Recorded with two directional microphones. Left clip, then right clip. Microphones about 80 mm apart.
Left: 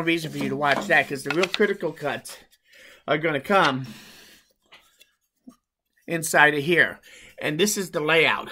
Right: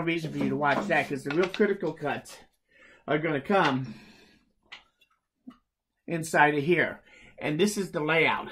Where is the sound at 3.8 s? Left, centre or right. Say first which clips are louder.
Left 3 dB; centre.